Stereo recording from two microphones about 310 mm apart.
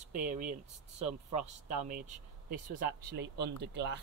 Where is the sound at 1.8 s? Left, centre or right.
Right.